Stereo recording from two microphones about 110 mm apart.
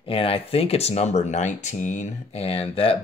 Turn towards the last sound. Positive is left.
turn(degrees=60)  # may be behind; listen again after turning